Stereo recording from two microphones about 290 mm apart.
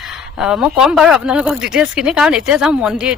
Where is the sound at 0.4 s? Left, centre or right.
Centre.